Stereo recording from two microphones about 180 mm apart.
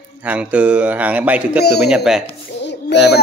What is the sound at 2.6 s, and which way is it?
Music, 70° left (ahead or behind).